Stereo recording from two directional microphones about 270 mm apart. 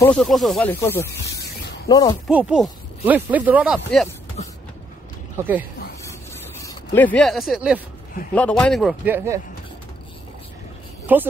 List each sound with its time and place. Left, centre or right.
0.0 s speech: centre
2.2 s speech: centre
4.4 s vehicle: left
5.4 s speech: centre
6.6 s speech: centre
11.1 s speech: centre